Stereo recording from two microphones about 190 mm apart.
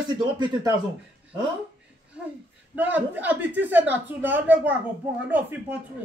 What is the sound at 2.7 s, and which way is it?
A woman's voice, 10° right (ahead or behind).